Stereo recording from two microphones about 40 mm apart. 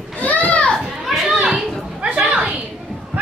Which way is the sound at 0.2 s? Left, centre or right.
Left.